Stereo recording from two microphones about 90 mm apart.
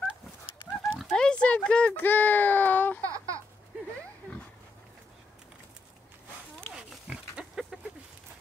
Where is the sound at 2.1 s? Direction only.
20° left (ahead or behind).